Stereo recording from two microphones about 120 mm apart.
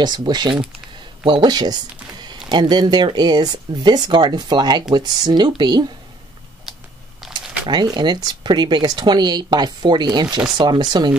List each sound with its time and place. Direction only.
0.0 s speech: 35° right (ahead or behind)
7.6 s speech: 40° right (ahead or behind)